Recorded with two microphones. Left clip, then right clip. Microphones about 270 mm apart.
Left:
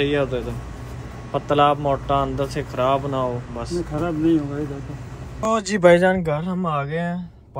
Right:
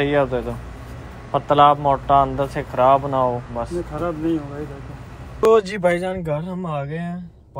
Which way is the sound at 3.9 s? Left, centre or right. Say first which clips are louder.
Left 3 dB; left.